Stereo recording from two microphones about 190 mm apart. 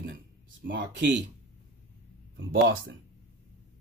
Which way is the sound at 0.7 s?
65° right (ahead or behind).